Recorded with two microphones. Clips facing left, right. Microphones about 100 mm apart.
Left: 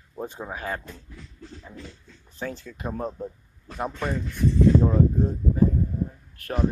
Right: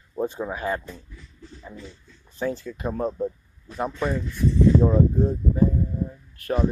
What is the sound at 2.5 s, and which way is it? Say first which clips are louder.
Speech: right 4 dB; centre (ahead or behind).